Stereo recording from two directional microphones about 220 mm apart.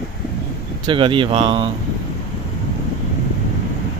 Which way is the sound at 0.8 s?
20° right (ahead or behind).